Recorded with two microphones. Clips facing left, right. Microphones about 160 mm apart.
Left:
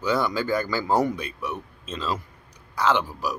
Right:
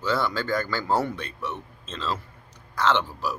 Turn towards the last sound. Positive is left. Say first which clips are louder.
# left 1 dB
turn(degrees=10)  # may be behind; listen again after turning